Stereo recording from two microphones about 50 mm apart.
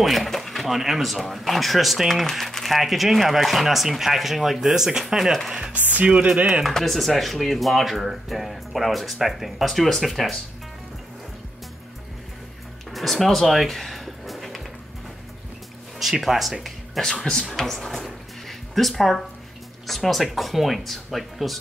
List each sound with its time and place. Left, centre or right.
0.0 s speech: centre
5.7 s speech: right
6.1 s speech: centre
6.6 s speech: centre
12.9 s a sound: centre
16.0 s speech: centre
17.0 s speech: centre
17.6 s speech: centre